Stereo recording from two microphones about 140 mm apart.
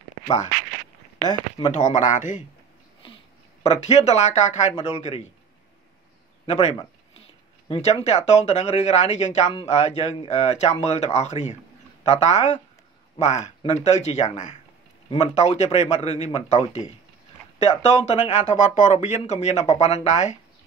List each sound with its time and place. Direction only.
1.2 s speech: 30° left (ahead or behind)
1.7 s speech: 60° left (ahead or behind)
3.6 s speech: 50° left (ahead or behind)
6.4 s a man's voice: 50° left (ahead or behind)